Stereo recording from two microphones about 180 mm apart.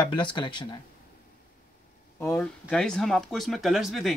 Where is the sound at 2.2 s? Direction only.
10° left (ahead or behind).